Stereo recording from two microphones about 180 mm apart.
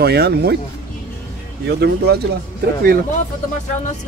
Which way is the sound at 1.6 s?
65° right (ahead or behind).